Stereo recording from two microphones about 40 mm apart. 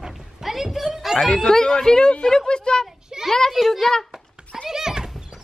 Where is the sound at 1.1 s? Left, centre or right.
Centre.